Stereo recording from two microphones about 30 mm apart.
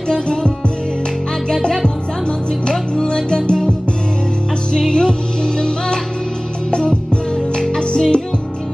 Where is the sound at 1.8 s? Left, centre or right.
Left.